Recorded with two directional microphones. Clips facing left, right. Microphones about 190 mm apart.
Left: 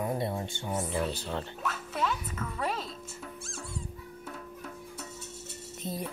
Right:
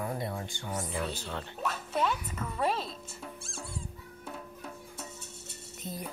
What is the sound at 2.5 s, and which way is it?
Speech, 35° right (ahead or behind).